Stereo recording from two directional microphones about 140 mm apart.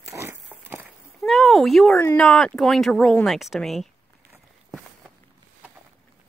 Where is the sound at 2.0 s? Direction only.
10° left (ahead or behind).